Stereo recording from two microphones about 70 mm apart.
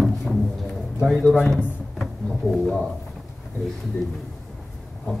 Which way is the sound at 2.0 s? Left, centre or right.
Centre.